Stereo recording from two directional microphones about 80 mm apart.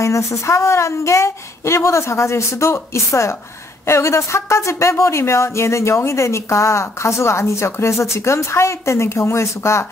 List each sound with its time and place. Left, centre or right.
0.0 s speech: left